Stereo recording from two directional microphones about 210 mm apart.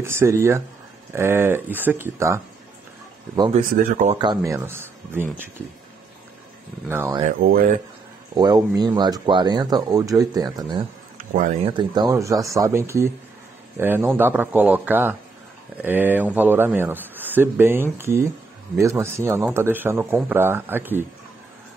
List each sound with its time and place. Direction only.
0.0 s speech: 10° right (ahead or behind)
3.7 s speech: 40° right (ahead or behind)
4.2 s speech: 15° right (ahead or behind)
6.9 s speech: 10° right (ahead or behind)
7.2 s speech: 45° right (ahead or behind)
8.4 s speech: 20° right (ahead or behind)
11.1 s a sound: 40° right (ahead or behind)
11.6 s speech: 20° right (ahead or behind)